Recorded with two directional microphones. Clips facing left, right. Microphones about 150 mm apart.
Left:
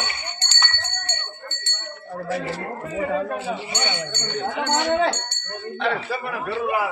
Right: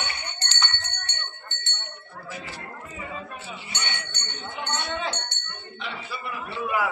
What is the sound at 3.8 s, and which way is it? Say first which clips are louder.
Speech: left 9 dB; 85° left.